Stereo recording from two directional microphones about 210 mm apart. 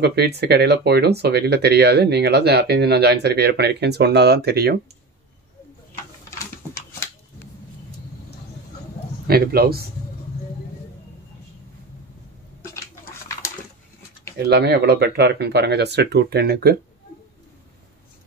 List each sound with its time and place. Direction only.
0.0 s speech: 50° right (ahead or behind)
9.3 s speech: 45° right (ahead or behind)
14.5 s speech: 50° right (ahead or behind)